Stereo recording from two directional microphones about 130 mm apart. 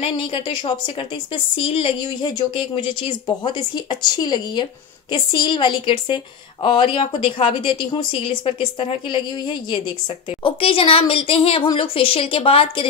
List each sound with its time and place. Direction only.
0.0 s a woman's voice: 45° left (ahead or behind)